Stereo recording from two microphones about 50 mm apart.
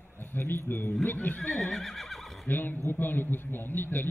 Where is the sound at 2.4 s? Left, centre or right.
Left.